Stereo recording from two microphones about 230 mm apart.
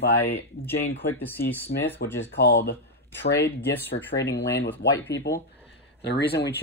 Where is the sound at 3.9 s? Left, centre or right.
Left.